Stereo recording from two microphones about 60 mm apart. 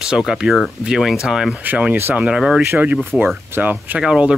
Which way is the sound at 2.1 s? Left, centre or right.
Centre.